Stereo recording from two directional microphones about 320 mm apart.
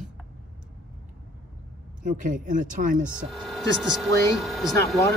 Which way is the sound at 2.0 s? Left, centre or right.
Right.